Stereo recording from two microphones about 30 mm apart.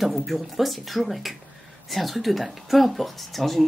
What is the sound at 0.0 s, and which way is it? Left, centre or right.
Speech, centre.